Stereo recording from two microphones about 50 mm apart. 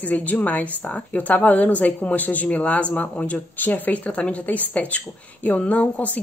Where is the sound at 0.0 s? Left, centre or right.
Left.